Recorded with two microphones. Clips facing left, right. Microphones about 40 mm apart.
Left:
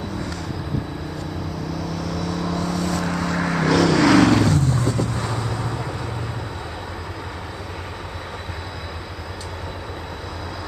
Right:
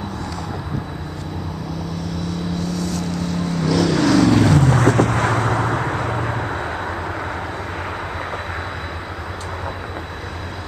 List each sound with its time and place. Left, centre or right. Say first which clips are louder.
2.7 s vehicle: left 1 dB; left
3.3 s vehicle: left 1 dB; left
3.6 s vehicle: left 1 dB; left
4.5 s vehicle: right 6 dB; right